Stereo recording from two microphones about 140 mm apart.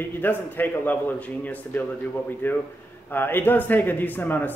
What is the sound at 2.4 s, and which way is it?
Speech, 15° left (ahead or behind).